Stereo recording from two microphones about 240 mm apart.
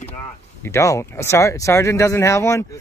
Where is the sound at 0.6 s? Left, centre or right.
Centre.